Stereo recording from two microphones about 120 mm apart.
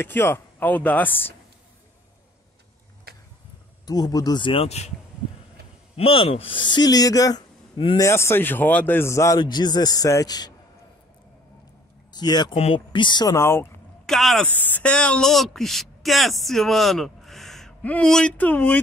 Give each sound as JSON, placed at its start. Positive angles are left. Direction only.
{"t": 0.0, "sound": "speech", "side_deg": 20}
{"t": 3.8, "sound": "speech", "side_deg": 35}
{"t": 4.6, "sound": "speech", "side_deg": 65}
{"t": 5.9, "sound": "speech", "side_deg": 55}
{"t": 8.0, "sound": "speech", "side_deg": 20}
{"t": 9.4, "sound": "speech", "side_deg": 35}
{"t": 12.1, "sound": "speech", "side_deg": 35}
{"t": 12.5, "sound": "speech", "side_deg": 50}
{"t": 13.3, "sound": "speech", "side_deg": 20}
{"t": 14.0, "sound": "speech", "side_deg": 0}
{"t": 14.5, "sound": "speech", "side_deg": 15}